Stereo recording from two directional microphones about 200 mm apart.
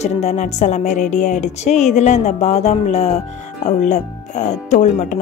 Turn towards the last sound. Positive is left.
turn(degrees=35)  # may be behind; listen again after turning